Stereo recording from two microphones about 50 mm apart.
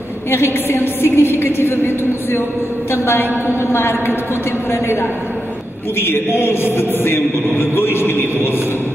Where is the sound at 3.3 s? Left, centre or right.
Right.